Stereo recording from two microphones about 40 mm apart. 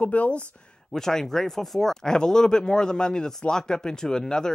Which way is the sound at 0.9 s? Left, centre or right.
Centre.